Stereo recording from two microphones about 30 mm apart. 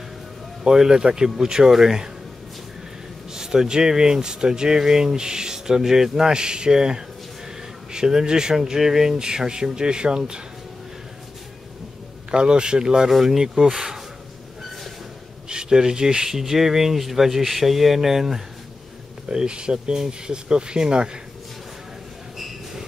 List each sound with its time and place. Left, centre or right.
0.7 s speech: right
3.3 s speech: right
12.3 s speech: right
13.1 s speech: centre
13.4 s speech: centre
15.4 s speech: right
16.3 s speech: centre
19.2 s speech: right